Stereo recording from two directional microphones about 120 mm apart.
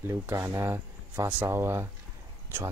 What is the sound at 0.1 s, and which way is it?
Speech, 25° right (ahead or behind).